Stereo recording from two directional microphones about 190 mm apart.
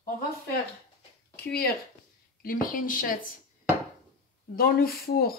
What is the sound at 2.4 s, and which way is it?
Speech, 50° left (ahead or behind).